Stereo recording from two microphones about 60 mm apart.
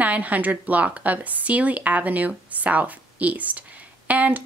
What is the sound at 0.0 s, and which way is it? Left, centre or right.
Speech, right.